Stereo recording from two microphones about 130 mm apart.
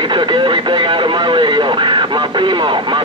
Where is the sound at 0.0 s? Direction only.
35° right (ahead or behind).